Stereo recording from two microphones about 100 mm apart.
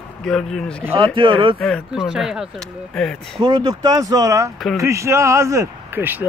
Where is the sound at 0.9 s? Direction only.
60° right (ahead or behind).